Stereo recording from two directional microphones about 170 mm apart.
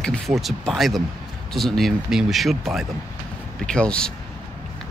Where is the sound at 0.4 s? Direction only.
Centre (ahead or behind).